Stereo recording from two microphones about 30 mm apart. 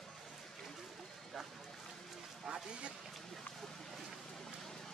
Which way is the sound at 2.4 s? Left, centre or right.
Right.